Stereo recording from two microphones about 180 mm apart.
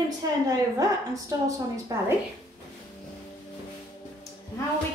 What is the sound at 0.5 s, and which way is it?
Speech, 20° right (ahead or behind).